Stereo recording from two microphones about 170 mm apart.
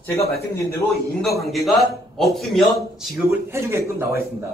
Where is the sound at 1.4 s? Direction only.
Centre (ahead or behind).